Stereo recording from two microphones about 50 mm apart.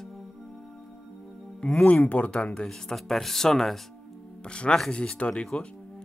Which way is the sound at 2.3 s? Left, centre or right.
Centre.